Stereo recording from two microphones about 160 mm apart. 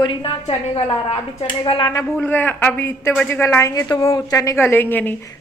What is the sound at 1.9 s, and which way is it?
A man's voice, 15° left (ahead or behind).